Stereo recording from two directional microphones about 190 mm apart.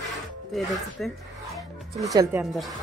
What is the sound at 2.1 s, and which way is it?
Speech, 15° right (ahead or behind).